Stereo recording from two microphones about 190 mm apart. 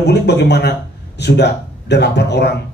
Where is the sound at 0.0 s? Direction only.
65° left (ahead or behind).